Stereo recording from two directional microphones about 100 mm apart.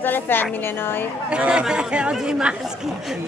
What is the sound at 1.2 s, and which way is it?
Speech, 10° right (ahead or behind).